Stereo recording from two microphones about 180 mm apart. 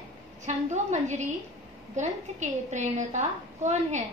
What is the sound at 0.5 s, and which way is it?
A woman's voice, 40° right (ahead or behind).